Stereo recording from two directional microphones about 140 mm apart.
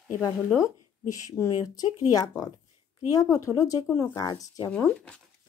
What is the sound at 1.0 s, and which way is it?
Speech, 20° left (ahead or behind).